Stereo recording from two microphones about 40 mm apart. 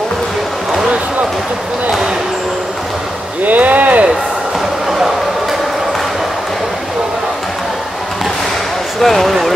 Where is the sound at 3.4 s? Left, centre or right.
Right.